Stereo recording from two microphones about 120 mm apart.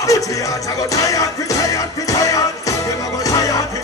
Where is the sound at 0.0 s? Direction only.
30° left (ahead or behind).